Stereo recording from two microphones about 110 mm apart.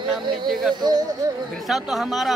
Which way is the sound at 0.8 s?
40° right (ahead or behind).